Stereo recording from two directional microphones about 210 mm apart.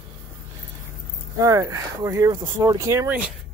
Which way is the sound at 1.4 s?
15° right (ahead or behind).